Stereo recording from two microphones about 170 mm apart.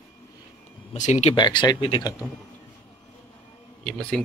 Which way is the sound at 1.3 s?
25° left (ahead or behind).